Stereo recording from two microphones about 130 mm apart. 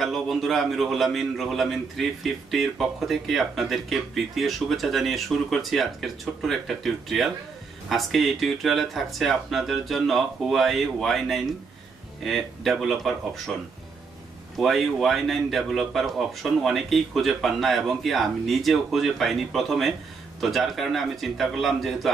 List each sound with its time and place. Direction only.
0.0 s a man's voice: centre (ahead or behind)
14.6 s a man's voice: centre (ahead or behind)